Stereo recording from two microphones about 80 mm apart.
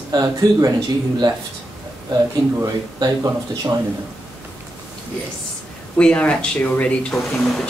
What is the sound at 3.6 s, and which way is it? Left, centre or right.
Speech, right.